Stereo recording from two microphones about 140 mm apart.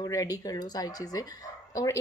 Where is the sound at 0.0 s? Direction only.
25° left (ahead or behind).